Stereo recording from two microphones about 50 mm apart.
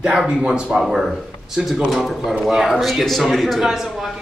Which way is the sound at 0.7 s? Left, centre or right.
Centre.